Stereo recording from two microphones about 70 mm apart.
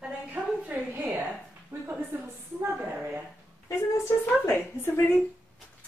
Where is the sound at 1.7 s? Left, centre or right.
Right.